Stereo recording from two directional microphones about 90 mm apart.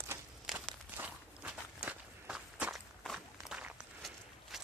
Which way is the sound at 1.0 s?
15° right (ahead or behind).